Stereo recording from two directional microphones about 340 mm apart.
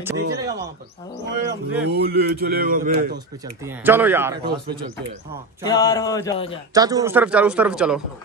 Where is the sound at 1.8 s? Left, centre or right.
Right.